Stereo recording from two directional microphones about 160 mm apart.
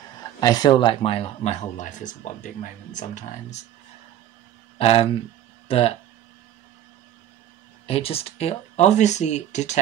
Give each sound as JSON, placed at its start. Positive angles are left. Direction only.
{"t": 0.4, "sound": "speech", "side_deg": 25}
{"t": 4.7, "sound": "speech", "side_deg": 35}
{"t": 7.8, "sound": "speech", "side_deg": 40}